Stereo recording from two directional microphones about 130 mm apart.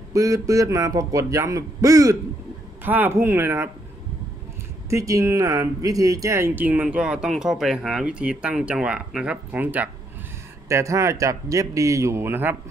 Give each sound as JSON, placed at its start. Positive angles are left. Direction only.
{"t": 0.1, "sound": "a man's voice", "side_deg": -25}
{"t": 2.8, "sound": "speech", "side_deg": -15}
{"t": 4.8, "sound": "a man's voice", "side_deg": -25}